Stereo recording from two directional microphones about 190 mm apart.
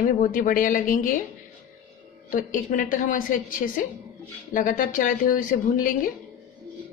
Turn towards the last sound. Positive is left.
turn(degrees=45)  # may be behind; listen again after turning